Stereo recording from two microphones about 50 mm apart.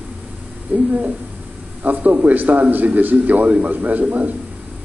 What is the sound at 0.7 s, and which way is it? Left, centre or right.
A man's voice, right.